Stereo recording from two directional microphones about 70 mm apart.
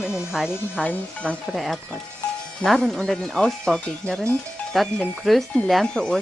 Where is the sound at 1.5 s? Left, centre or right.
Centre.